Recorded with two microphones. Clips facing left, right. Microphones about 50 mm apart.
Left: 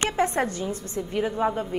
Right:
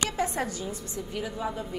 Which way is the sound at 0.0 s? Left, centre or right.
Left.